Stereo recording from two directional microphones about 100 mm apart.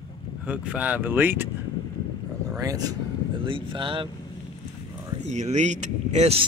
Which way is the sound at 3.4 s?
60° right (ahead or behind).